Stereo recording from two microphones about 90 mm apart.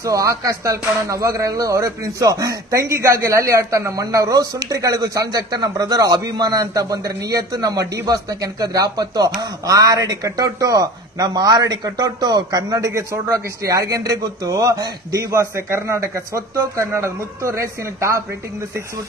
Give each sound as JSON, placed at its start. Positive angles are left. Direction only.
{"t": 0.0, "sound": "speech", "side_deg": -35}